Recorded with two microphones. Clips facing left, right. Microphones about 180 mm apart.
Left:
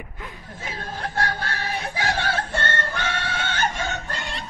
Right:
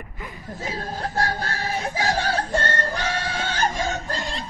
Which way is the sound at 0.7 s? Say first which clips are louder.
Right 2 dB; 40° right (ahead or behind).